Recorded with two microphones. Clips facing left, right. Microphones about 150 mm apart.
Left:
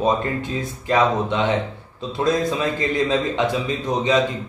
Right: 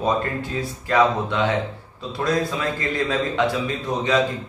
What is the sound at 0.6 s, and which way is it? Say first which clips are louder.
A man's voice: right 1 dB; 20° left (ahead or behind).